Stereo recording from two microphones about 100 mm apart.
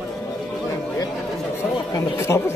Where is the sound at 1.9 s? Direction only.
30° left (ahead or behind).